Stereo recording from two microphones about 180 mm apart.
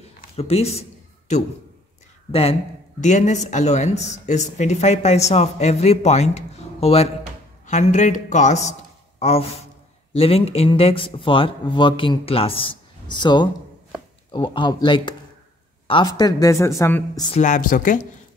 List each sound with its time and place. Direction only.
0.4 s speech: 35° left (ahead or behind)
3.0 s speech: 40° left (ahead or behind); by 17.3 s 15° left (ahead or behind)
17.3 s a woman's voice: 45° left (ahead or behind)